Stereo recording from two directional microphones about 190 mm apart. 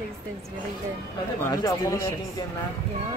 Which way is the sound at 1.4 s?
15° left (ahead or behind).